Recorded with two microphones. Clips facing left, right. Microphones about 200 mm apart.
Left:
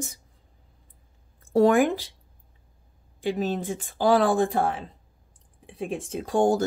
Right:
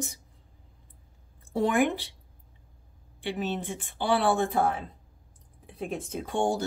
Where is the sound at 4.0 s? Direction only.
90° left.